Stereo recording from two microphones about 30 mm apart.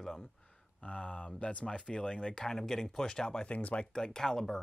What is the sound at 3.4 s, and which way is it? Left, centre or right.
Speech, left.